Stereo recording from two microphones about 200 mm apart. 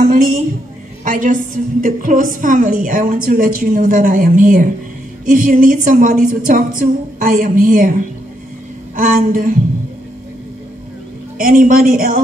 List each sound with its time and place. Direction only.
0.0 s a sound: 40° right (ahead or behind)
1.0 s a woman's voice: 40° right (ahead or behind)
11.3 s a woman's voice: 45° right (ahead or behind)